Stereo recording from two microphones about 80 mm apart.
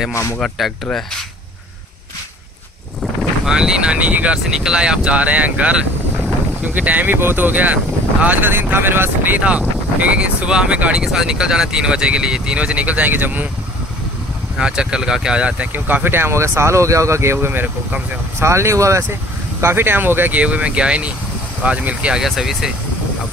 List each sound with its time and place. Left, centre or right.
0.1 s speech: left
0.4 s speech: centre
3.4 s speech: centre
14.6 s speech: centre
15.7 s speech: right
22.2 s speech: centre